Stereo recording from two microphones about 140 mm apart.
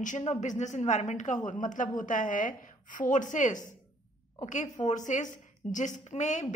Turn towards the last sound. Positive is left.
turn(degrees=55)  # may be behind; listen again after turning